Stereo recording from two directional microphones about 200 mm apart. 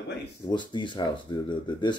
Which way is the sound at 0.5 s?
25° left (ahead or behind).